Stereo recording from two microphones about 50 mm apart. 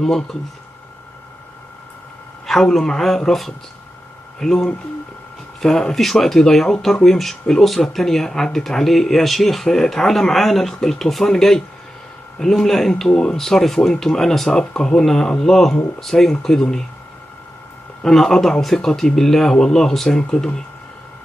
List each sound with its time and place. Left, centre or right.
0.0 s speech: centre
2.4 s speech: centre
13.1 s speech: centre
13.4 s speech: centre
18.0 s speech: centre